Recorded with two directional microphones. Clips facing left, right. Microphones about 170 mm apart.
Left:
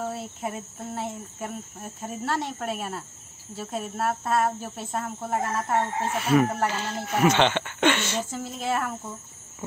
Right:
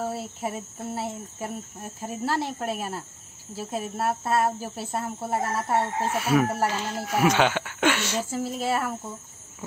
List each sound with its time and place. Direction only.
0.0 s speech: 5° right (ahead or behind)